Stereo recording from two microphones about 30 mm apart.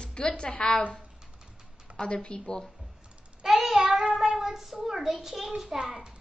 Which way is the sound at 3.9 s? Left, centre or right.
Right.